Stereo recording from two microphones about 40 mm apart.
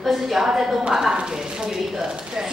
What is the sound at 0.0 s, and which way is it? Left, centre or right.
Speech, centre.